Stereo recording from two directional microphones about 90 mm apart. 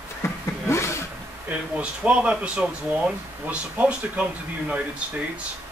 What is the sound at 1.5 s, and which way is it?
Speech, 15° right (ahead or behind).